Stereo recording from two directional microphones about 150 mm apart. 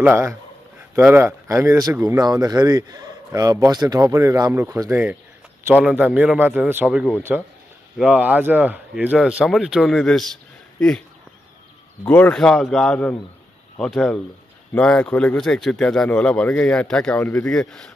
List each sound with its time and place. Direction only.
0.0 s a man's voice: 15° right (ahead or behind); by 11.1 s 5° left (ahead or behind)
12.1 s speech: 10° left (ahead or behind)